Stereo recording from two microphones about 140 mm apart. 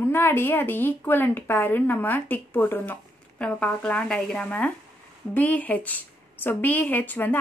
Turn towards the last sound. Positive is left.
turn(degrees=15)  # may be behind; listen again after turning